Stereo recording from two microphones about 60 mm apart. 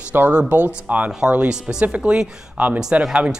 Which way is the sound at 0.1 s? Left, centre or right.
Right.